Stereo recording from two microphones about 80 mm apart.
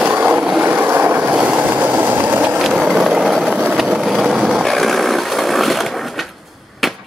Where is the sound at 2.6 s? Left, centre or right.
Centre.